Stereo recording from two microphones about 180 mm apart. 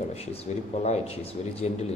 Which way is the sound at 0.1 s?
35° left (ahead or behind).